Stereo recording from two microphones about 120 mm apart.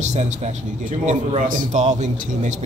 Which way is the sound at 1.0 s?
85° right.